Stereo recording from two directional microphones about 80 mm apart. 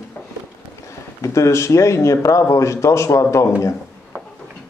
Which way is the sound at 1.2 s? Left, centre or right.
Left.